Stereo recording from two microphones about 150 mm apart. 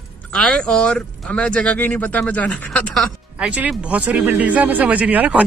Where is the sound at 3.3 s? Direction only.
10° right (ahead or behind).